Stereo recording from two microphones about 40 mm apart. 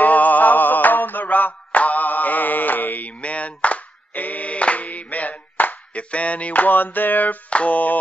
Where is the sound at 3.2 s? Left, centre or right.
Left.